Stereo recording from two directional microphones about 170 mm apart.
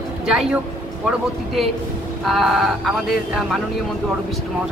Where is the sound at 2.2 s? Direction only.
Centre (ahead or behind).